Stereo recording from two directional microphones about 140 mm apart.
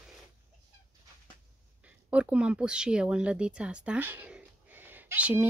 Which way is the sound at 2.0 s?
10° right (ahead or behind).